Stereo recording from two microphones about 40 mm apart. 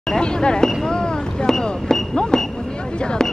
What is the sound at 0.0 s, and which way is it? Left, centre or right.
Speech, centre.